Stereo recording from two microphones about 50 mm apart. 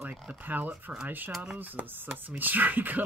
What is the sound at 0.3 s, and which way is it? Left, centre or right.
Speech, right.